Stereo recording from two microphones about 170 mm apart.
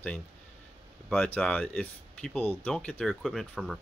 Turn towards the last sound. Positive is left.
turn(degrees=0)  # may be behind; listen again after turning